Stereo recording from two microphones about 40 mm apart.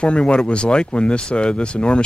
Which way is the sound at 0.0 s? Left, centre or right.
Left.